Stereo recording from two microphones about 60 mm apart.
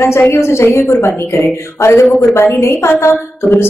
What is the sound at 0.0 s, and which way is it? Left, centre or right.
A woman's voice, left.